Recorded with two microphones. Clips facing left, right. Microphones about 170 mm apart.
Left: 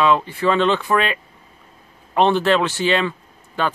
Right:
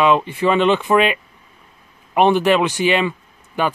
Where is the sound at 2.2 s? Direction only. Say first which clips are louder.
Right 2 dB; 15° right (ahead or behind).